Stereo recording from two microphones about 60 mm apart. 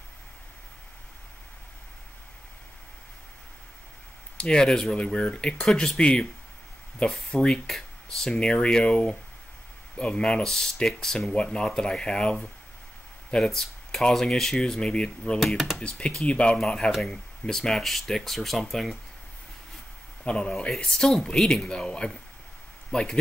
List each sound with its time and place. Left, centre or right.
4.4 s speech: centre
15.3 s speech: centre
16.0 s speech: centre
20.2 s speech: centre